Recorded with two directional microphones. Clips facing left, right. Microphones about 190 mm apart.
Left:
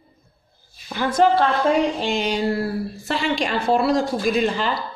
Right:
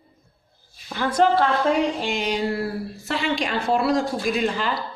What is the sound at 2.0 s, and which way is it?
A woman's voice, 30° left (ahead or behind).